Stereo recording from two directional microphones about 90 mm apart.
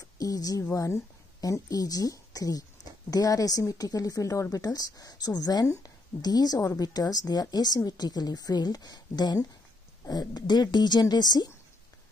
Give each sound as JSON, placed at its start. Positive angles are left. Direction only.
{"t": 0.0, "sound": "a woman's voice", "side_deg": 45}